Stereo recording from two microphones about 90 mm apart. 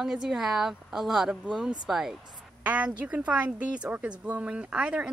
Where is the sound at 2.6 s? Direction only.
15° right (ahead or behind).